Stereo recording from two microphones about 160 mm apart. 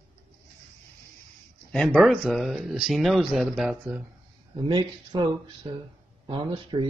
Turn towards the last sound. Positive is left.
turn(degrees=-30)  # may be behind; listen again after turning